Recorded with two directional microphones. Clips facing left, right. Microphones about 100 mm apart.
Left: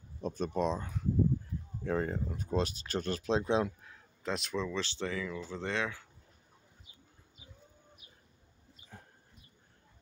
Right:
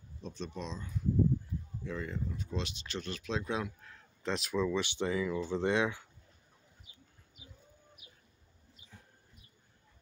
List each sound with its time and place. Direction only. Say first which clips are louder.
0.2 s speech: left 9 dB; 50° left (ahead or behind); by 3.7 s 30° left (ahead or behind)
3.8 s speech: right 1 dB; 5° left (ahead or behind); by 6.0 s 15° right (ahead or behind)